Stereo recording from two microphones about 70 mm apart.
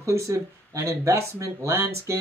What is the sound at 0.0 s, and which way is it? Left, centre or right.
Speech, right.